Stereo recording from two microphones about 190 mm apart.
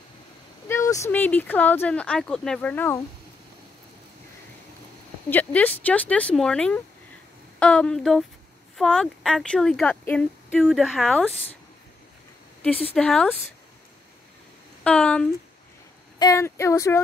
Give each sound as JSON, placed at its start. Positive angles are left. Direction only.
{"t": 0.7, "sound": "speech", "side_deg": 15}
{"t": 5.3, "sound": "speech", "side_deg": 10}
{"t": 12.6, "sound": "speech", "side_deg": 5}
{"t": 14.8, "sound": "speech", "side_deg": 5}
{"t": 16.2, "sound": "speech", "side_deg": 15}